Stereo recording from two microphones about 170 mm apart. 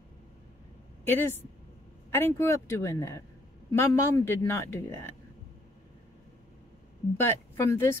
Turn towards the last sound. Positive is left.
turn(degrees=15)  # may be behind; listen again after turning